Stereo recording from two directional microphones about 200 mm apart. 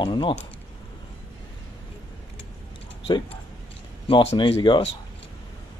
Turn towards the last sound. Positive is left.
turn(degrees=25)  # may be behind; listen again after turning